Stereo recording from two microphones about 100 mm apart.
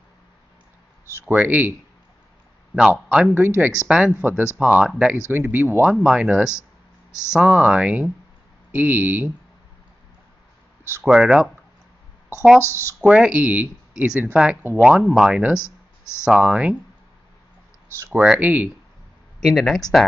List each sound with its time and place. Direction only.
1.0 s speech: 30° right (ahead or behind)
1.3 s speech: 15° right (ahead or behind)
2.9 s speech: 10° right (ahead or behind)
3.3 s speech: 20° right (ahead or behind)
5.3 s speech: 20° right (ahead or behind)
5.9 s speech: 10° right (ahead or behind)
11.1 s speech: 5° right (ahead or behind)
13.0 s speech: 10° right (ahead or behind)
18.1 s speech: 10° right (ahead or behind)
19.4 s speech: centre (ahead or behind)